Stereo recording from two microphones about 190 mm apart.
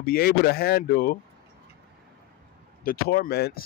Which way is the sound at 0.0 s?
55° left (ahead or behind).